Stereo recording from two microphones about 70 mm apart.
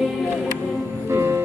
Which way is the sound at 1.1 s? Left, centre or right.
Right.